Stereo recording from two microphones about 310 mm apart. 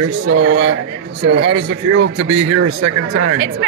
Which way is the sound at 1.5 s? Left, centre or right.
Right.